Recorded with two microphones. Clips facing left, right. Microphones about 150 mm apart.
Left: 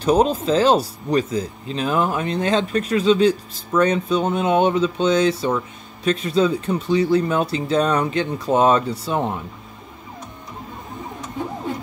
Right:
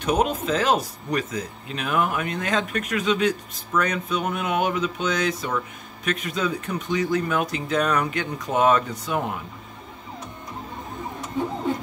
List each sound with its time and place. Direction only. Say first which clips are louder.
0.0 s speech: left 5 dB; 30° left (ahead or behind)